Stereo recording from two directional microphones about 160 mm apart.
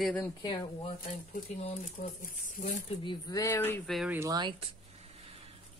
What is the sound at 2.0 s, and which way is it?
Speech, 50° left (ahead or behind).